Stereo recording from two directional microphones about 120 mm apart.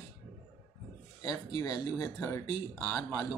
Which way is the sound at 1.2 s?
30° left (ahead or behind).